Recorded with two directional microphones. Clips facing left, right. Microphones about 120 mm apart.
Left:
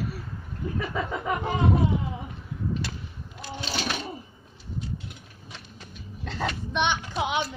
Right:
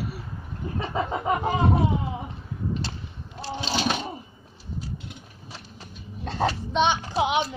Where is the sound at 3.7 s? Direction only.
25° right (ahead or behind).